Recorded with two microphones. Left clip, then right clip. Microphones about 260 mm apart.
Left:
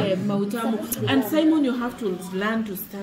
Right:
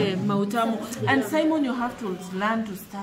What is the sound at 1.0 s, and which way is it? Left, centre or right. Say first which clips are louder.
Speech: left 1 dB; centre.